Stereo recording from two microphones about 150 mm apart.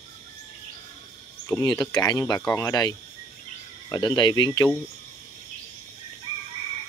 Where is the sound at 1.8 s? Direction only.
25° left (ahead or behind).